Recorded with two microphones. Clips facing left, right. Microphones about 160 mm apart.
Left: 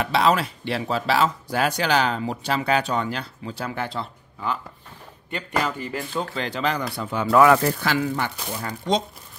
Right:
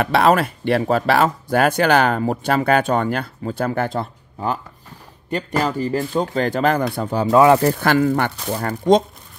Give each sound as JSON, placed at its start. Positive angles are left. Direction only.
{"t": 0.0, "sound": "speech", "side_deg": -55}
{"t": 6.3, "sound": "speech", "side_deg": -45}
{"t": 7.2, "sound": "speech", "side_deg": -25}
{"t": 7.8, "sound": "speech", "side_deg": -50}